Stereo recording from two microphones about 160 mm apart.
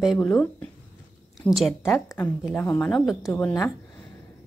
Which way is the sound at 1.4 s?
5° left (ahead or behind).